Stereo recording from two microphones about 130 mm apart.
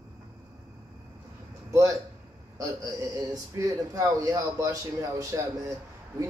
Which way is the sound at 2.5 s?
25° right (ahead or behind).